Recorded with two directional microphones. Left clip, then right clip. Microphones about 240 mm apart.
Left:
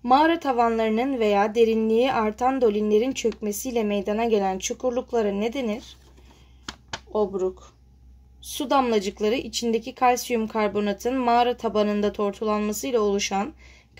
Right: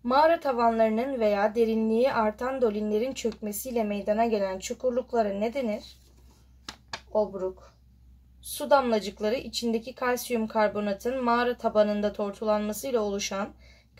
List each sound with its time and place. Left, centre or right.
0.0 s speech: left
7.1 s speech: left